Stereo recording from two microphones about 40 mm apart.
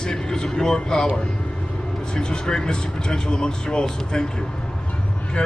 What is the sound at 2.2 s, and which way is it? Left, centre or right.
Speech, centre.